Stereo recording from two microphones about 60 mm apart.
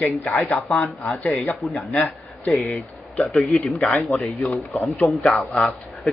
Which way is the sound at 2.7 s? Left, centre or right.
Centre.